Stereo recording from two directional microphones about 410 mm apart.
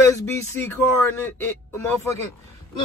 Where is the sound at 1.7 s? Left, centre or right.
Centre.